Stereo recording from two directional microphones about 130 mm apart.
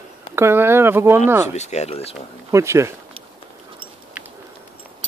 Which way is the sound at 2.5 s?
20° right (ahead or behind).